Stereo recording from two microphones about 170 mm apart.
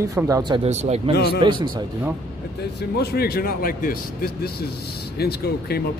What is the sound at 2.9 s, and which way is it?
Speech, 65° left (ahead or behind).